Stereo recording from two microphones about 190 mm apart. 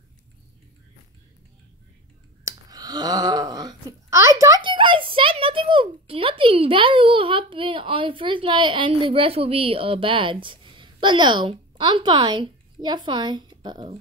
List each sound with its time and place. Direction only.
2.4 s speech: 20° right (ahead or behind)